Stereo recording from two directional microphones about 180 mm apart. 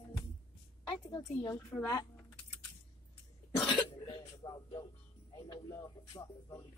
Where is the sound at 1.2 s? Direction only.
15° left (ahead or behind).